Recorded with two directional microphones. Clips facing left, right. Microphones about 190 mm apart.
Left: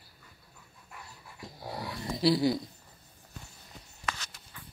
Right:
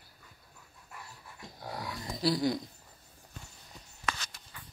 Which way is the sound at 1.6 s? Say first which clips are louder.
Left 2 dB; 5° left (ahead or behind).